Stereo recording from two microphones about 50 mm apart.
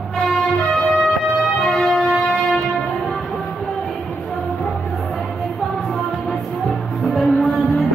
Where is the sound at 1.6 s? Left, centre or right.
Centre.